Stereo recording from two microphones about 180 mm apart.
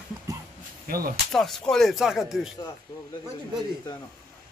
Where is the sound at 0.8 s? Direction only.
55° right (ahead or behind).